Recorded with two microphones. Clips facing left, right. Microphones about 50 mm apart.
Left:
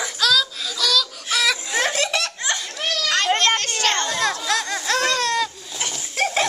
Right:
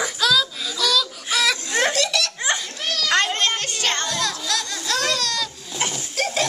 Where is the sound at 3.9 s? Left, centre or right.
Left.